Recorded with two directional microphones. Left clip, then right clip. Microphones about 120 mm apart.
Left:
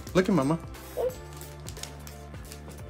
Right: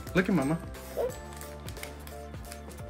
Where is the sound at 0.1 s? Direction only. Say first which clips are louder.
Left 3 dB; 20° left (ahead or behind).